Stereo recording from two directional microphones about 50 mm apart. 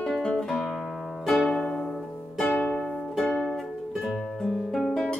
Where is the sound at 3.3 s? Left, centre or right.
Centre.